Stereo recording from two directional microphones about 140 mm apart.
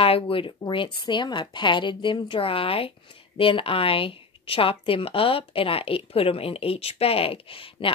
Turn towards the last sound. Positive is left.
turn(degrees=40)  # may be behind; listen again after turning